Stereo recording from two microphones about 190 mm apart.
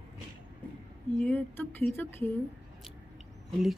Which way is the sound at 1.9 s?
10° left (ahead or behind).